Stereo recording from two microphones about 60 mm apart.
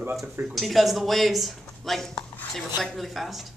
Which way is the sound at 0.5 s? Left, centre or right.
Centre.